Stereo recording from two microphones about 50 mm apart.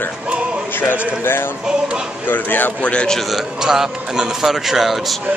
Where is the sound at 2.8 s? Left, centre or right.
Left.